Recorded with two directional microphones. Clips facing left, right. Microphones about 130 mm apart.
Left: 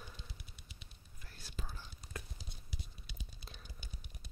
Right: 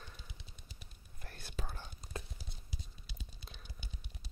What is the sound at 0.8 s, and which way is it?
Whispering, 55° right (ahead or behind).